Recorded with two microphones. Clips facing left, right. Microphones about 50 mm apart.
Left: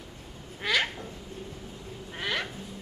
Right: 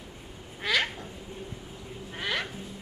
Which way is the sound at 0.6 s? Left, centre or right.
Centre.